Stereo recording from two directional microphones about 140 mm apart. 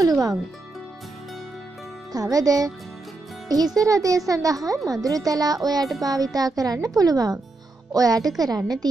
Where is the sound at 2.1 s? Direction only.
25° right (ahead or behind).